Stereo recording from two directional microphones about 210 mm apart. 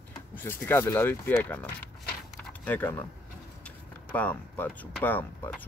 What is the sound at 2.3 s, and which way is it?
Keys jangling, 10° left (ahead or behind).